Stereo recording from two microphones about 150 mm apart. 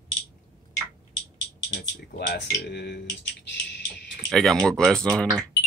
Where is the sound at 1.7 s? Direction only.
90° left.